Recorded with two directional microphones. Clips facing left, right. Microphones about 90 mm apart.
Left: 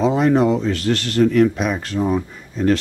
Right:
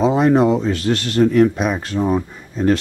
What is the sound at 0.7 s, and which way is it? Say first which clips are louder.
Speech: right 1 dB; 10° right (ahead or behind).